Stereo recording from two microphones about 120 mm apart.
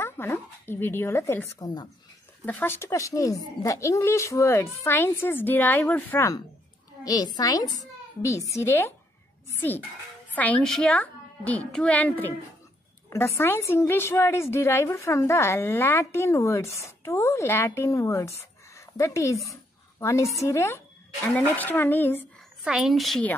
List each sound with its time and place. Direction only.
0.0 s a woman's voice: 20° left (ahead or behind)
1.6 s a child's voice: 35° left (ahead or behind)
2.4 s a woman's voice: 20° left (ahead or behind)
7.1 s a child's voice: 35° left (ahead or behind)
10.3 s a woman's voice: 10° left (ahead or behind)
18.4 s a sound: 25° left (ahead or behind)
20.0 s a woman's voice: 25° left (ahead or behind)
22.6 s a woman's voice: 5° right (ahead or behind)